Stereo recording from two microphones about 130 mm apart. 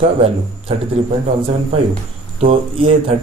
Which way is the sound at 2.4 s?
45° right (ahead or behind).